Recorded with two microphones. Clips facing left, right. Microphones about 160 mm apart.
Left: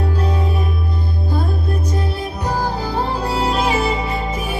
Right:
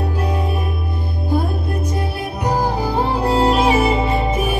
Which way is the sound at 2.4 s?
20° right (ahead or behind).